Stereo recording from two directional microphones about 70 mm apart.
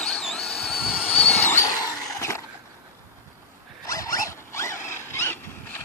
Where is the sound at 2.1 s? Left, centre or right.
Left.